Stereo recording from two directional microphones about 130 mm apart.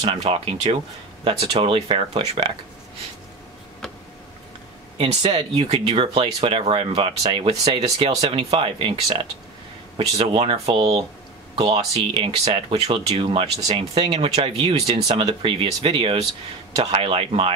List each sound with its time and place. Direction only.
0.1 s speech: 45° right (ahead or behind)
4.9 s speech: 45° right (ahead or behind)